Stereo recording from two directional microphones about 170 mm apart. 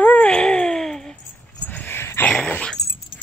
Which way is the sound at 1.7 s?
10° left (ahead or behind).